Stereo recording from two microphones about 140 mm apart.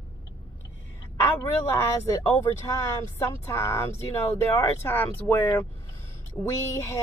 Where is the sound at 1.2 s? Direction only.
15° left (ahead or behind).